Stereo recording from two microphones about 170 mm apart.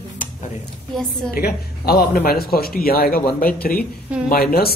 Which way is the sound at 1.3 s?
65° left (ahead or behind).